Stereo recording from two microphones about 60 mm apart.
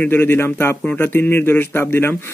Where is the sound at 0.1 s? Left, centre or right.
Left.